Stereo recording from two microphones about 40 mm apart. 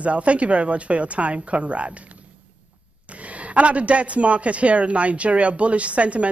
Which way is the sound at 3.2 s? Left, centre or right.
Right.